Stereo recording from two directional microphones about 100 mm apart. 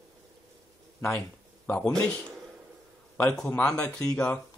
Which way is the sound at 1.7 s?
10° left (ahead or behind).